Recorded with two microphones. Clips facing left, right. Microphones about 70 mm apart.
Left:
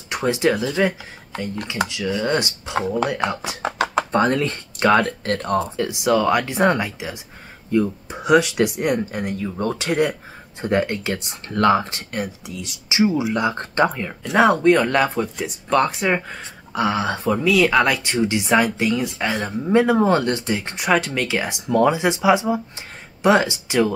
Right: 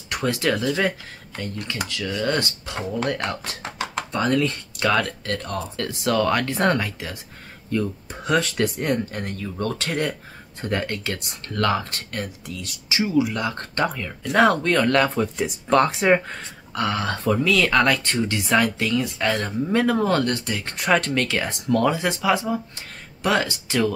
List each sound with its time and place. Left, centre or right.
0.1 s speech: centre
4.1 s speech: left
5.8 s speech: centre
16.7 s speech: centre
20.8 s speech: centre